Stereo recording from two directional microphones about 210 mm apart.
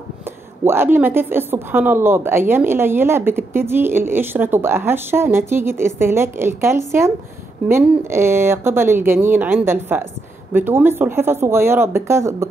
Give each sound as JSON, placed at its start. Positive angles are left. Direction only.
{"t": 0.2, "sound": "a woman's voice", "side_deg": -10}